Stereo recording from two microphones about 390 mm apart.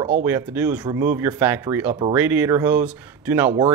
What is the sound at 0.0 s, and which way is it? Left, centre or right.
Speech, centre.